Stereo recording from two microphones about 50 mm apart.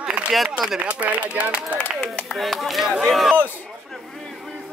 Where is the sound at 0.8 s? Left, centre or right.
Right.